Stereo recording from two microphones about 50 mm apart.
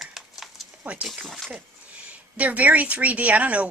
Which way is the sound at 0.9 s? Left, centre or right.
Right.